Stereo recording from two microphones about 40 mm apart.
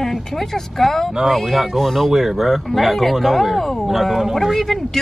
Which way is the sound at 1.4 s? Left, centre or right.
Centre.